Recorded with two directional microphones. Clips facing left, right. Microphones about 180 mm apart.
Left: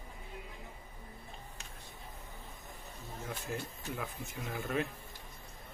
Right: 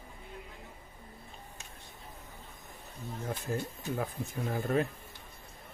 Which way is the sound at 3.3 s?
35° right (ahead or behind).